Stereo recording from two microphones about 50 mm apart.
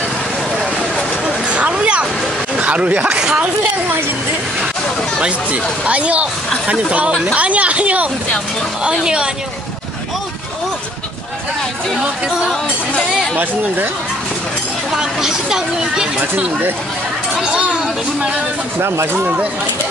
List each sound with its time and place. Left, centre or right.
0.9 s a sound: right
2.5 s speech: right
3.2 s speech: centre
5.2 s speech: right
14.9 s speech: centre
18.8 s speech: right